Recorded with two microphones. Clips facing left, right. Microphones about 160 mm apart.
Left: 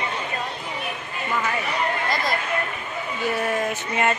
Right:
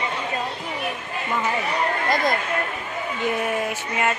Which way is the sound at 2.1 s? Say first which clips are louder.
Right 3 dB; 55° right (ahead or behind).